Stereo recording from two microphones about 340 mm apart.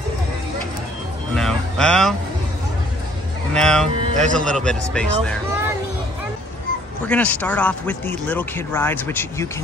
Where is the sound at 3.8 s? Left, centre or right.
Right.